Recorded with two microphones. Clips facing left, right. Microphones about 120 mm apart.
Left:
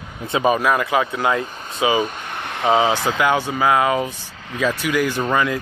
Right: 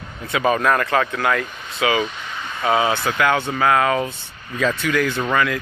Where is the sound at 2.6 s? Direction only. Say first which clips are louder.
Left 2 dB; 20° left (ahead or behind).